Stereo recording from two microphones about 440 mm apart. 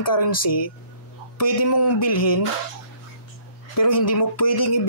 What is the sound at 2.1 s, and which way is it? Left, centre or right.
Music, left.